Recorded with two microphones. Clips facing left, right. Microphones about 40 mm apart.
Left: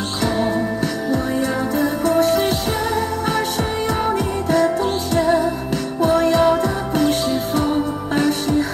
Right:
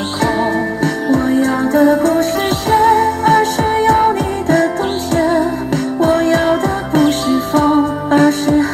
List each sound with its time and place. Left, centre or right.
1.0 s music: right
6.0 s music: right